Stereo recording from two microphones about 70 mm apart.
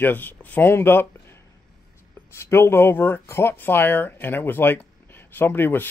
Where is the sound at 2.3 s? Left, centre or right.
Left.